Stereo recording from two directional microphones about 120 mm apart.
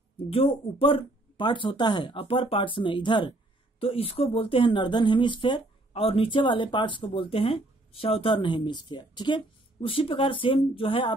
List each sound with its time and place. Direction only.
0.3 s speech: 50° left (ahead or behind)
3.8 s speech: 55° left (ahead or behind)